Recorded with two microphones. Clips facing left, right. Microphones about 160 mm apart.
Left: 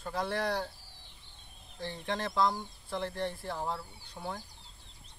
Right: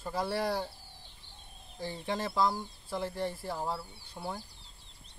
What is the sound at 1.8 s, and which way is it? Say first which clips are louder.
Speech: right 1 dB; 5° right (ahead or behind).